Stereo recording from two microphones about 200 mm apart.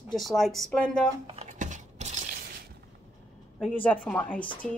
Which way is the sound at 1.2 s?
30° right (ahead or behind).